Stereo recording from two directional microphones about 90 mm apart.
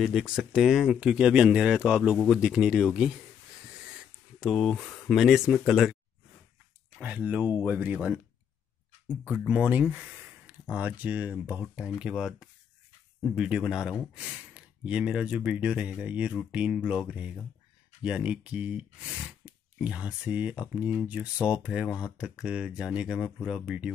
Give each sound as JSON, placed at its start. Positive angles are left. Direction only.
{"t": 0.0, "sound": "speech", "side_deg": -5}
{"t": 4.4, "sound": "speech", "side_deg": 0}
{"t": 4.8, "sound": "a sound", "side_deg": 10}
{"t": 5.1, "sound": "speech", "side_deg": -5}
{"t": 7.0, "sound": "speech", "side_deg": -15}
{"t": 9.4, "sound": "speech", "side_deg": -15}